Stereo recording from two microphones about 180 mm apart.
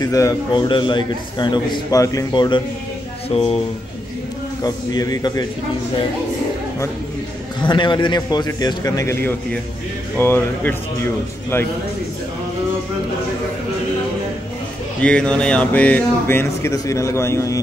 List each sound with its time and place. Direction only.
0.0 s a man's voice: 20° left (ahead or behind)
3.3 s speech: 35° left (ahead or behind)
4.6 s a man's voice: 20° left (ahead or behind)
7.6 s a man's voice: 25° left (ahead or behind)
15.0 s speech: 5° left (ahead or behind)